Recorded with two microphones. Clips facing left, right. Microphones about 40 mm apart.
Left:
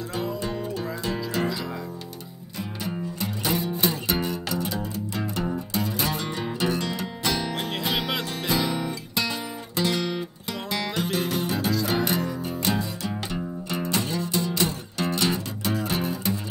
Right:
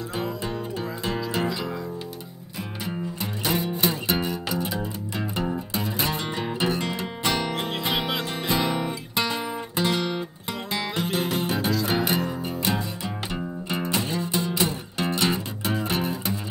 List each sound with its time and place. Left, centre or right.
0.7 s music: right
1.4 s music: centre
2.8 s music: centre
6.8 s music: right
7.8 s music: centre
11.8 s music: centre